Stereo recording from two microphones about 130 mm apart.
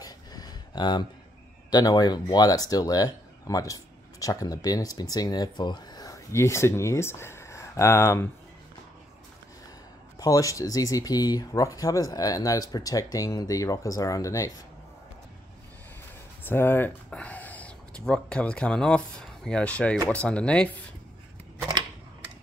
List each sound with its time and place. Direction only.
0.0 s a sound: 30° left (ahead or behind)
1.7 s speech: 30° left (ahead or behind)
10.1 s speech: 25° left (ahead or behind)
16.4 s speech: 15° left (ahead or behind)